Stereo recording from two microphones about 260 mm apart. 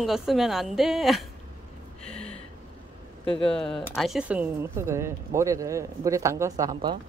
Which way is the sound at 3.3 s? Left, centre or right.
Centre.